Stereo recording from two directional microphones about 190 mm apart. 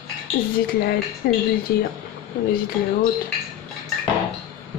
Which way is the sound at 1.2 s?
55° left (ahead or behind).